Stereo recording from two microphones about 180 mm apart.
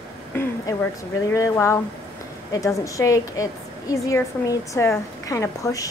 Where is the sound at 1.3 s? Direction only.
15° left (ahead or behind).